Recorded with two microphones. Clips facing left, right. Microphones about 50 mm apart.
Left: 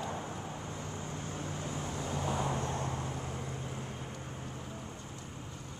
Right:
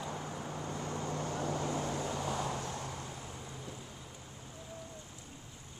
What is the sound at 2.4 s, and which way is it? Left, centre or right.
Vehicle, left.